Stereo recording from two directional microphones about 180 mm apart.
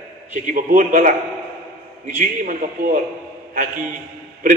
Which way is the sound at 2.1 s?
45° right (ahead or behind).